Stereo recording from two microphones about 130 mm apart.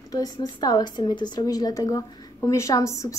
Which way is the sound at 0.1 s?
30° left (ahead or behind).